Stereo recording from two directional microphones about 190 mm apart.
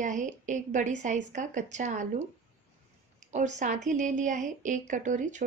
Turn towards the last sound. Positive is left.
turn(degrees=-40)  # may be behind; listen again after turning